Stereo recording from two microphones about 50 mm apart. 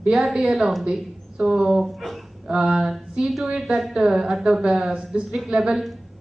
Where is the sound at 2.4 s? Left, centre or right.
Centre.